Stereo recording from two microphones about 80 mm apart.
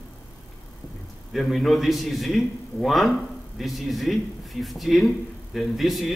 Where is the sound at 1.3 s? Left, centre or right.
Centre.